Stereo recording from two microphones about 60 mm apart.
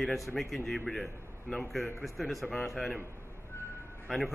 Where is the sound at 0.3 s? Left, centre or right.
Centre.